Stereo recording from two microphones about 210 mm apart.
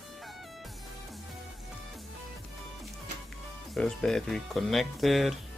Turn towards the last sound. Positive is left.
turn(degrees=0)  # may be behind; listen again after turning